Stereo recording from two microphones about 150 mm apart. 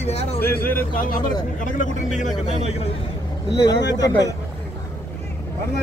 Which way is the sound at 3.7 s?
25° left (ahead or behind).